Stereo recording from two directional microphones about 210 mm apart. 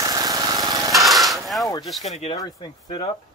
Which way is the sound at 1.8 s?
Centre (ahead or behind).